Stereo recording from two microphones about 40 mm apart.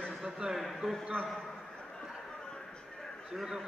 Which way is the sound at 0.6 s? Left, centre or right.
Centre.